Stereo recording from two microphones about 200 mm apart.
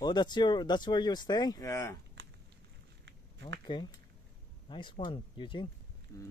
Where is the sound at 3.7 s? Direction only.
25° left (ahead or behind).